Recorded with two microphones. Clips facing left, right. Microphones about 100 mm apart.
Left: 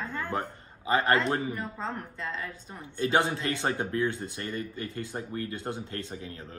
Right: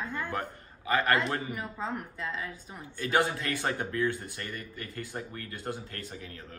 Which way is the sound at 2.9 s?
25° left (ahead or behind).